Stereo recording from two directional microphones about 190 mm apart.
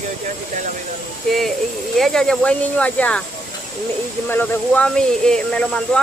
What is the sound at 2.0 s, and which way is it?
Speech, 5° left (ahead or behind).